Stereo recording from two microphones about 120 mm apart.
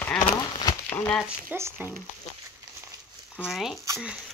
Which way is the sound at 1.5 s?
15° right (ahead or behind).